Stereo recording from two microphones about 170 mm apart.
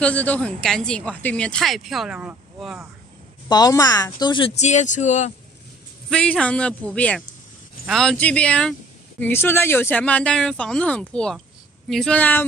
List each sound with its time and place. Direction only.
0.0 s speech: 10° left (ahead or behind)
3.4 s speech: 25° left (ahead or behind); by 5.3 s 45° left (ahead or behind)
6.0 s speech: 5° left (ahead or behind)